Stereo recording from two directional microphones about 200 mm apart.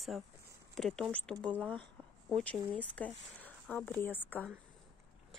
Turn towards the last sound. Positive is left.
turn(degrees=10)  # may be behind; listen again after turning